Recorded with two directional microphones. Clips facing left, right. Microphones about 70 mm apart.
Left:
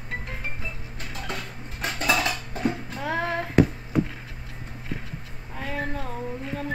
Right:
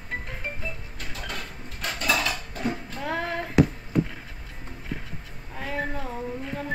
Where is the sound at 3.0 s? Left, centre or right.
Centre.